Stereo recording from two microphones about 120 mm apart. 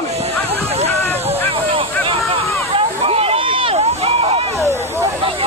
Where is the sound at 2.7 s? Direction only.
55° right (ahead or behind).